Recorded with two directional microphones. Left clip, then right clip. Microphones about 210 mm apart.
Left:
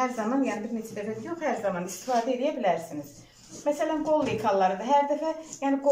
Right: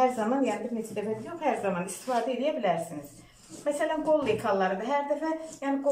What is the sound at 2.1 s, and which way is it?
A woman's voice, centre (ahead or behind).